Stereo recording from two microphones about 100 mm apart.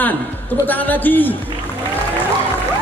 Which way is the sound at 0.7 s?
15° left (ahead or behind).